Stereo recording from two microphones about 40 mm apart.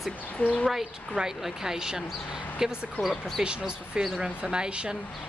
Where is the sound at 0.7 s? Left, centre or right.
Centre.